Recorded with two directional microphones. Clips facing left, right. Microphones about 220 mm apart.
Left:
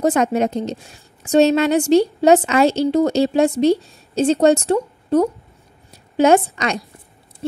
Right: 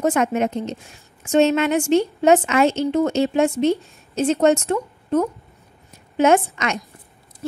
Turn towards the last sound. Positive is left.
turn(degrees=35)  # may be behind; listen again after turning